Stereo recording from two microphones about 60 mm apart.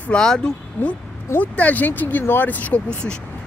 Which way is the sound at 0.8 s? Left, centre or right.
Left.